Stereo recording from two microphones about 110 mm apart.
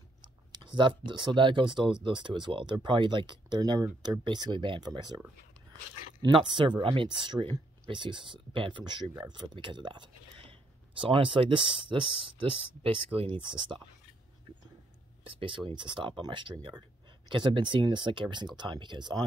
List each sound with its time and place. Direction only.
0.5 s speech: 45° right (ahead or behind)
6.2 s speech: 45° right (ahead or behind)
15.7 s speech: 45° right (ahead or behind)